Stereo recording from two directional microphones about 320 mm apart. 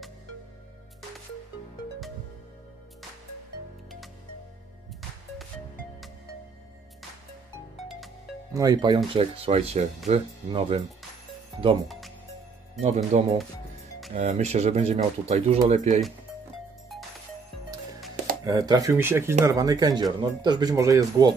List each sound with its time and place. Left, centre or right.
7.9 s music: centre
8.6 s speech: centre
12.8 s speech: centre
16.9 s music: centre
18.4 s speech: centre